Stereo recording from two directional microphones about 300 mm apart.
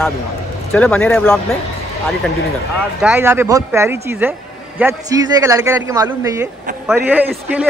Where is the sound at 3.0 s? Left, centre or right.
Centre.